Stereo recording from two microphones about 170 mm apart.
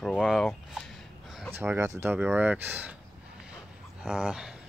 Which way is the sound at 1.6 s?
15° right (ahead or behind).